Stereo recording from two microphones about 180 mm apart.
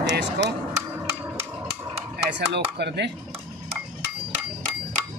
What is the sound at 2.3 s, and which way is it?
Speech, 70° right (ahead or behind).